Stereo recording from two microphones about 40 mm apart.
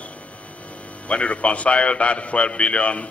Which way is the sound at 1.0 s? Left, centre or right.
Left.